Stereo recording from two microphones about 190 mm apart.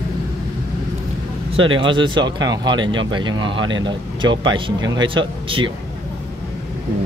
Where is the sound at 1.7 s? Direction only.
25° right (ahead or behind).